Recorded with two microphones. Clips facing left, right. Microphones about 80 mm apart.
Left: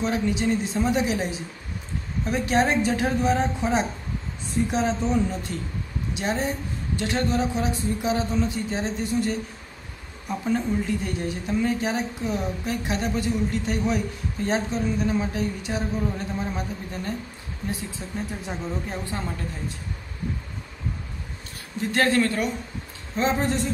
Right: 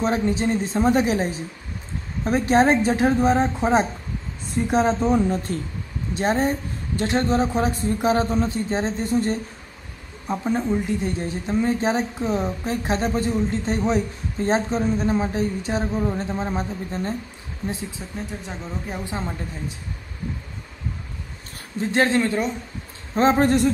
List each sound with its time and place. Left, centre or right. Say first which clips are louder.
0.0 s speech: right 3 dB; right
10.2 s speech: right 2 dB; right
18.1 s speech: left 4 dB; centre
19.0 s speech: right 2 dB; right
21.9 s speech: right 2 dB; right
23.1 s speech: right 6 dB; right